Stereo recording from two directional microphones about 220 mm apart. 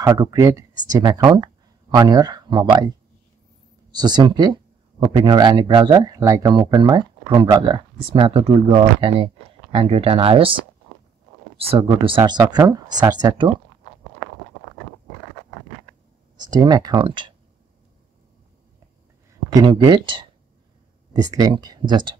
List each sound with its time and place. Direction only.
0.0 s speech: 15° right (ahead or behind)
3.9 s speech: 20° right (ahead or behind)
11.5 s speech: 25° right (ahead or behind)
16.3 s speech: 20° right (ahead or behind)
19.5 s speech: 20° right (ahead or behind)